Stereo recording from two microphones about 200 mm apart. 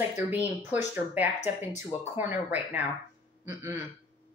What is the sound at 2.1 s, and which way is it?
A woman's voice, 10° right (ahead or behind).